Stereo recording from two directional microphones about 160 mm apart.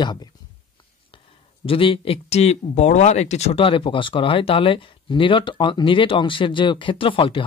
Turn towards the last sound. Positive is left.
turn(degrees=35)  # may be behind; listen again after turning